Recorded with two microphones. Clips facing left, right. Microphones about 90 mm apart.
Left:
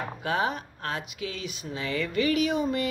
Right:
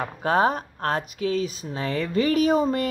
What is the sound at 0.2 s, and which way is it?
Speech, 40° right (ahead or behind).